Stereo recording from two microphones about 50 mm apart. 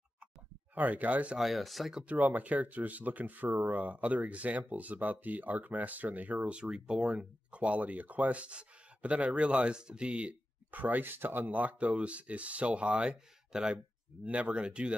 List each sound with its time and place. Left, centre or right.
0.7 s speech: right
1.4 s speech: centre
2.1 s speech: right
6.5 s speech: centre
10.7 s speech: right
13.5 s speech: centre
14.2 s speech: right